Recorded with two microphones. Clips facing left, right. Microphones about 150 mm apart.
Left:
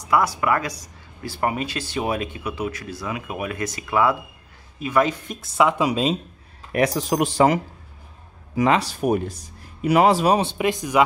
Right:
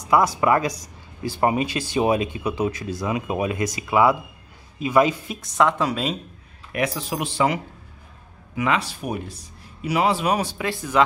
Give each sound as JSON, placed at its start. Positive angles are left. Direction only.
{"t": 0.4, "sound": "speech", "side_deg": -20}
{"t": 5.2, "sound": "speech", "side_deg": 0}
{"t": 5.6, "sound": "speech", "side_deg": 10}
{"t": 6.7, "sound": "speech", "side_deg": 40}